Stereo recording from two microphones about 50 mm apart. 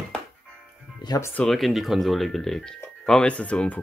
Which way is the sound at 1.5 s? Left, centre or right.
Centre.